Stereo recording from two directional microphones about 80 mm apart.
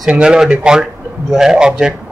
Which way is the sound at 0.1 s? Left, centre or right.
Centre.